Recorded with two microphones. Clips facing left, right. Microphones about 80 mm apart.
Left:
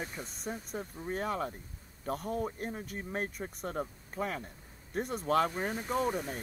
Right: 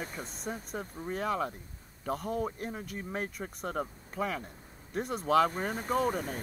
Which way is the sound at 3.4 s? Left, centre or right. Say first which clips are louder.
Even; centre.